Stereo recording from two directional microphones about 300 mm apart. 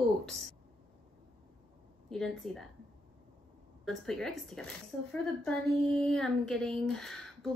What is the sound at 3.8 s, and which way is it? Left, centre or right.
Speech, centre.